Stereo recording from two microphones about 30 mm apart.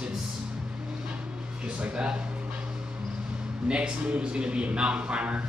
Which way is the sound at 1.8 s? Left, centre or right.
Right.